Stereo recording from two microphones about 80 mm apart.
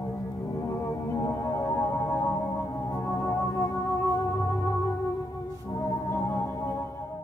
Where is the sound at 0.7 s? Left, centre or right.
Left.